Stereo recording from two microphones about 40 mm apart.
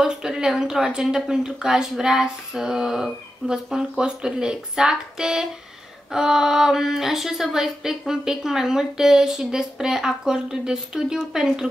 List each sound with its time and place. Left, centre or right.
0.0 s a woman's voice: centre